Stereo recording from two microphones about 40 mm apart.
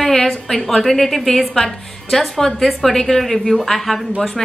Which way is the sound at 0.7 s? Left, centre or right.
Centre.